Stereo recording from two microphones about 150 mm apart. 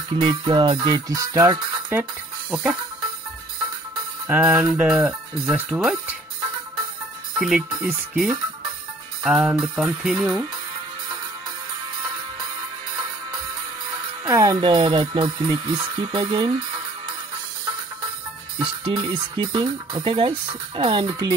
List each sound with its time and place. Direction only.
0.2 s speech: 30° right (ahead or behind)
2.5 s speech: 5° right (ahead or behind)
4.3 s speech: 10° right (ahead or behind)
7.3 s speech: 5° right (ahead or behind)
14.2 s speech: 25° right (ahead or behind)
18.6 s speech: 35° right (ahead or behind)